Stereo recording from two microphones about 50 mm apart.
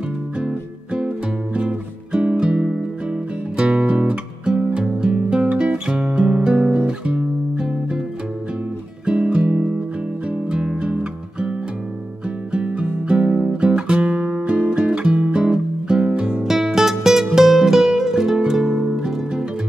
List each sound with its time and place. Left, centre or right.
0.4 s music: centre
9.1 s music: right
12.5 s music: right
16.4 s music: centre